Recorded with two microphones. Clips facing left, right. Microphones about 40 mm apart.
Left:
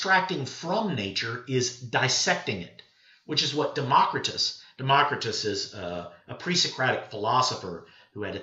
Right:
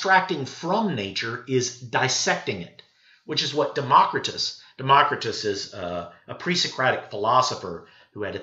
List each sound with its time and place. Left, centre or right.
0.0 s speech: centre
4.7 s speech: centre